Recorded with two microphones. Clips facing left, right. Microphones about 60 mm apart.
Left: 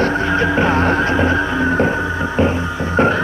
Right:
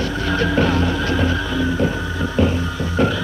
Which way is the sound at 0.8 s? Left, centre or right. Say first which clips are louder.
Left 5 dB; left.